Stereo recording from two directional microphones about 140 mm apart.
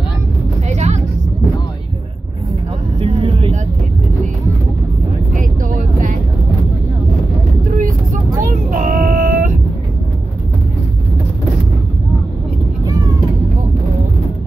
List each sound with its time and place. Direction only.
0.7 s vehicle: 55° right (ahead or behind)
3.0 s vehicle: 45° right (ahead or behind)
5.3 s vehicle: 70° right (ahead or behind)
7.6 s vehicle: 75° right (ahead or behind)
12.8 s cat: 25° right (ahead or behind)